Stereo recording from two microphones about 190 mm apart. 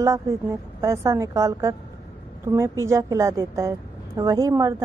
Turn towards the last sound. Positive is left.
turn(degrees=-15)  # may be behind; listen again after turning